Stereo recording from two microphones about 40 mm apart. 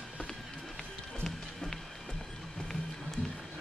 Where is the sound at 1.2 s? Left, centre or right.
Centre.